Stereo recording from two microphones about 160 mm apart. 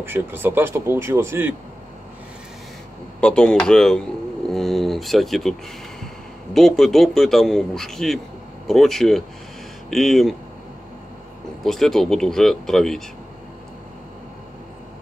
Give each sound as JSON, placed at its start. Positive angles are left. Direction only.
{"t": 0.0, "sound": "speech", "side_deg": -15}
{"t": 3.2, "sound": "a man's voice", "side_deg": 5}
{"t": 11.6, "sound": "a man's voice", "side_deg": 0}